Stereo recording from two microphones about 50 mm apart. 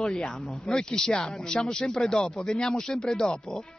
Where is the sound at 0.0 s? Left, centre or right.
Centre.